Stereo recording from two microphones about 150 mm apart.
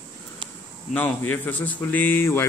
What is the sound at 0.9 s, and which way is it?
Speech, 10° left (ahead or behind).